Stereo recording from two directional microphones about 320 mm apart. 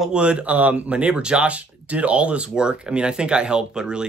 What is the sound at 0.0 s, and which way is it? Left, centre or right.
Speech, centre.